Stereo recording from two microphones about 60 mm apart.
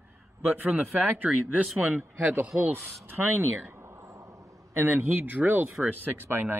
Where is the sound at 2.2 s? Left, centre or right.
Right.